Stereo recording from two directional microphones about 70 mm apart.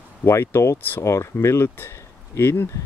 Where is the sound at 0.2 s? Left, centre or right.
Left.